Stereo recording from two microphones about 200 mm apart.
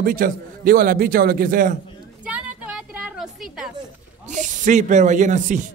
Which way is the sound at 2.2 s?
5° right (ahead or behind).